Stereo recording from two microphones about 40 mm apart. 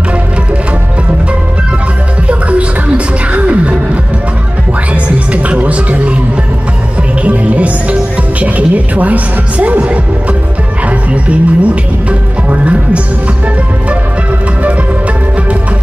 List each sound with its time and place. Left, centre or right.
3.3 s music: right
7.2 s music: right
10.9 s music: right